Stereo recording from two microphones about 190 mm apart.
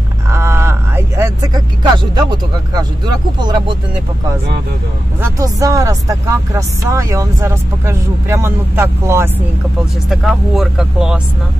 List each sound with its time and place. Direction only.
0.3 s vehicle: 15° right (ahead or behind)
3.3 s speech: 25° right (ahead or behind)
5.2 s speech: 20° right (ahead or behind)
10.0 s speech: centre (ahead or behind)